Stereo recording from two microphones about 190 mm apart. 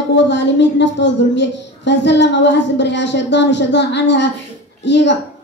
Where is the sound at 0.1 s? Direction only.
65° left (ahead or behind).